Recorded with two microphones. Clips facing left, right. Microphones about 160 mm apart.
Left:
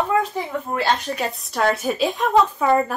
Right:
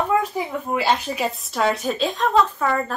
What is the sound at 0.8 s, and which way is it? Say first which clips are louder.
Speech: right 1 dB; 5° right (ahead or behind).